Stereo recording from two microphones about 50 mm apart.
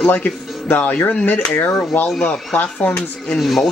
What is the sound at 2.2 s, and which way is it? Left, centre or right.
Speech, left.